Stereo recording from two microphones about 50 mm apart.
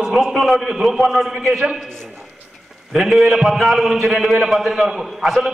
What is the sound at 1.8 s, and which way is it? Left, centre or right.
Speech, centre.